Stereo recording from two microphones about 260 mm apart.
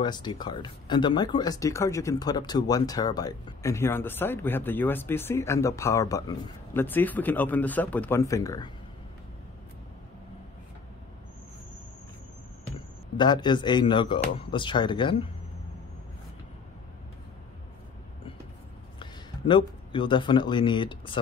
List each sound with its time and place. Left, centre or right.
0.0 s speech: centre
13.2 s speech: centre
18.9 s a man's voice: centre